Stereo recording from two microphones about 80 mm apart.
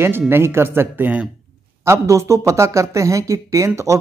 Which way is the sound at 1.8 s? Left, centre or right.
Right.